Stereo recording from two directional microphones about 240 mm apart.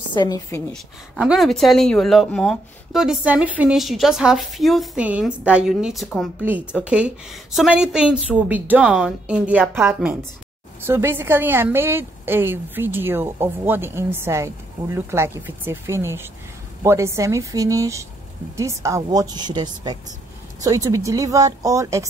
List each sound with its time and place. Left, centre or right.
0.1 s a woman's voice: centre
1.1 s a woman's voice: centre